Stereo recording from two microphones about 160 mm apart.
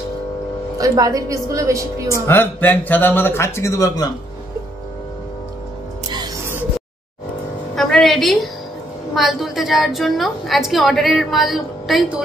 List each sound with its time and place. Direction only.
0.7 s a woman's voice: 20° right (ahead or behind)
2.2 s speech: 10° left (ahead or behind)
6.0 s music: 25° right (ahead or behind)
7.7 s music: centre (ahead or behind)
9.1 s a woman's voice: centre (ahead or behind)